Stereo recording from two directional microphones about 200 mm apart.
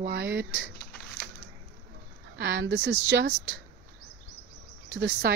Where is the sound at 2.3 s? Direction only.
50° right (ahead or behind).